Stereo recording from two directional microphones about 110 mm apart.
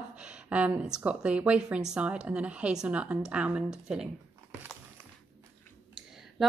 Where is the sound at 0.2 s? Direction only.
10° right (ahead or behind).